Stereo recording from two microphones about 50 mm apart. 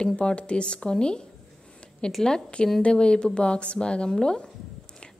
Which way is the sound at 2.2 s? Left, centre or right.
Centre.